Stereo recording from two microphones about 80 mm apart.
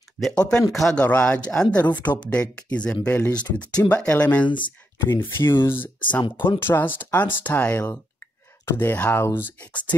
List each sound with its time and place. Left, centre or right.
0.2 s speech: centre
0.9 s speech: centre
4.5 s speech: left
4.9 s speech: left